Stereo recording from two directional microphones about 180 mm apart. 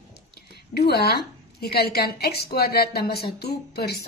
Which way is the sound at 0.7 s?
65° left (ahead or behind).